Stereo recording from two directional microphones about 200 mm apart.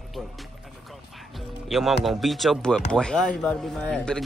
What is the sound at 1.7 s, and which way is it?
Speech, centre (ahead or behind).